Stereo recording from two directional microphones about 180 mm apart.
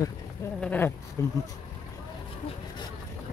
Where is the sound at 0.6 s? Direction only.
10° left (ahead or behind).